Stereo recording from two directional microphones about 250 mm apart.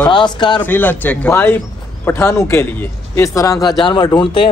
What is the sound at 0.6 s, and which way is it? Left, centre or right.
Speech, centre.